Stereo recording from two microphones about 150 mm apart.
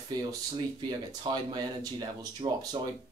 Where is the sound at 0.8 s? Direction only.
30° right (ahead or behind).